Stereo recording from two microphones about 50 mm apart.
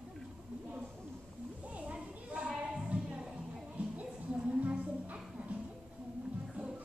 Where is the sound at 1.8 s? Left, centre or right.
Right.